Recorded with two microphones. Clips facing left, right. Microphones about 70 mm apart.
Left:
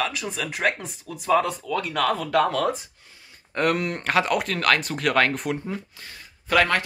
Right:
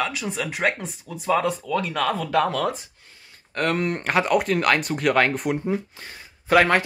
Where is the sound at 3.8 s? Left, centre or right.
Centre.